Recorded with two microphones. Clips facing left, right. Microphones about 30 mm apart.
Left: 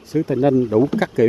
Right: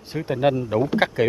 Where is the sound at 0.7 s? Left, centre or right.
Right.